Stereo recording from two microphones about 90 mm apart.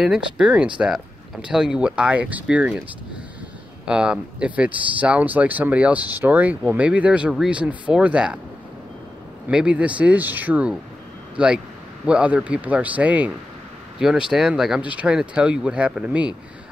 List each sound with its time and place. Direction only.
0.0 s speech: 5° right (ahead or behind)
3.8 s speech: 10° right (ahead or behind)
9.5 s speech: 10° right (ahead or behind)
13.9 s speech: 5° right (ahead or behind)
14.8 s speech: 15° right (ahead or behind)